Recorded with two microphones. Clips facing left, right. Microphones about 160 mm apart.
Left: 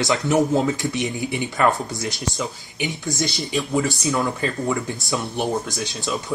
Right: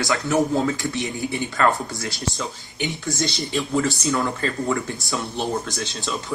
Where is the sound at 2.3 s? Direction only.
Centre (ahead or behind).